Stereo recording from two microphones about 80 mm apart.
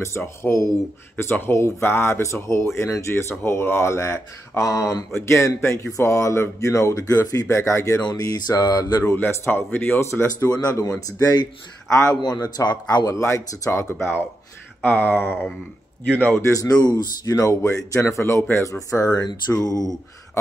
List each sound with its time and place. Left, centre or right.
0.4 s speech: left
8.2 s mantra: left
9.3 s speech: left
10.6 s mantra: left
11.9 s speech: left
12.2 s speech: left
13.0 s speech: left
14.8 s speech: left
16.3 s speech: left
18.9 s mantra: left